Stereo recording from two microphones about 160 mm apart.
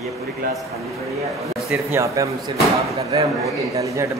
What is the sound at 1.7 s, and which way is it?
Speech, 15° right (ahead or behind).